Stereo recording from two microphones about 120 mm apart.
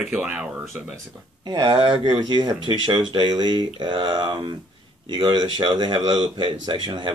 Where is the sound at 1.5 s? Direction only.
40° right (ahead or behind).